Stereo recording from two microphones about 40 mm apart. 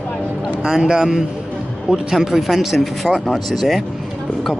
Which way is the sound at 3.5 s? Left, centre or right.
Centre.